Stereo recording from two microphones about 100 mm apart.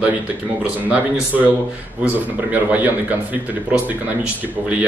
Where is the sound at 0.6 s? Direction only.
15° right (ahead or behind).